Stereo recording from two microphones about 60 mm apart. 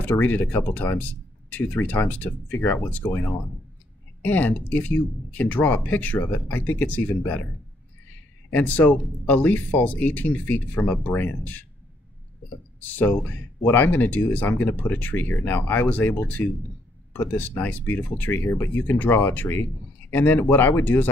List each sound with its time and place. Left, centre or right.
0.3 s speech: left
4.2 s speech: left
8.5 s speech: left
12.8 s speech: left
18.4 s speech: left